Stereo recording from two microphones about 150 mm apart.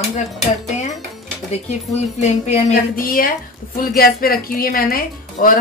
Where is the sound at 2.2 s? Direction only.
50° left (ahead or behind).